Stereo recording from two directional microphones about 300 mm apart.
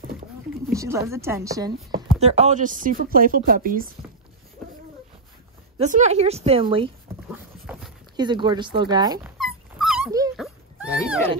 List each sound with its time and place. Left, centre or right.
0.7 s speech: centre
2.1 s speech: right
5.8 s speech: right
7.7 s a sound: centre
8.2 s speech: centre
9.8 s dog: centre
10.3 s a sound: centre